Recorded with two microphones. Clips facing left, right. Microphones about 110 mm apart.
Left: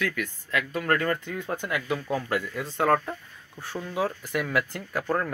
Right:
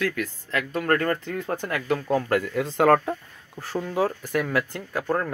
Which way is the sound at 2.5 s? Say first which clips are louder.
Right 5 dB; 85° right.